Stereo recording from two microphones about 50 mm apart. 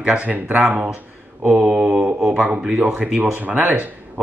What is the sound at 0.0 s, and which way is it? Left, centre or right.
Speech, right.